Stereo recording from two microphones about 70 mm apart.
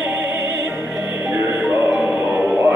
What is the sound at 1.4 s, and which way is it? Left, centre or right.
Music, right.